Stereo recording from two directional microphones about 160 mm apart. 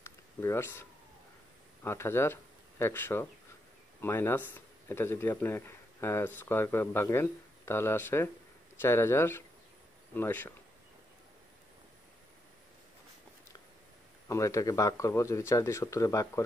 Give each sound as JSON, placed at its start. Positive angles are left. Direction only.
{"t": 0.0, "sound": "a sound", "side_deg": 15}
{"t": 1.8, "sound": "speech", "side_deg": 15}
{"t": 14.2, "sound": "speech", "side_deg": 20}